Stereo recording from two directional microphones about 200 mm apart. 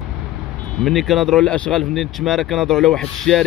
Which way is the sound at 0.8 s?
Centre (ahead or behind).